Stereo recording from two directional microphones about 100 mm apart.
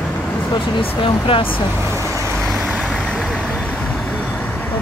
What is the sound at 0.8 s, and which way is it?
Speech, 65° left (ahead or behind).